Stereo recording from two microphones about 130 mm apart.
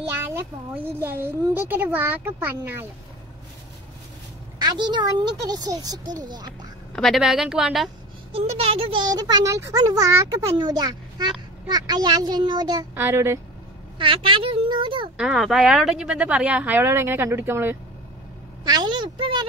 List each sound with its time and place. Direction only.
0.3 s speech: 15° right (ahead or behind)
4.6 s a child's voice: 35° right (ahead or behind)
7.0 s a woman's voice: centre (ahead or behind)
8.3 s speech: 50° right (ahead or behind)
9.0 s a child's voice: 30° right (ahead or behind)
12.9 s a child's voice: 20° right (ahead or behind)
13.9 s a child's voice: 40° right (ahead or behind)
15.1 s speech: 5° right (ahead or behind)
18.6 s speech: 30° right (ahead or behind)